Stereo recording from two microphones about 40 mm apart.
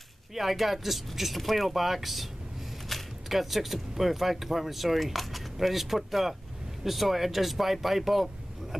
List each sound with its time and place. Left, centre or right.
0.3 s speech: centre